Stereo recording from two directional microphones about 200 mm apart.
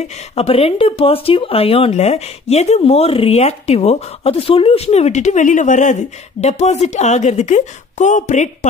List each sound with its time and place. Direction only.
0.4 s speech: 30° left (ahead or behind)